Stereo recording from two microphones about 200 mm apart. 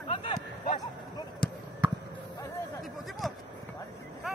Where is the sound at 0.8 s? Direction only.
20° left (ahead or behind).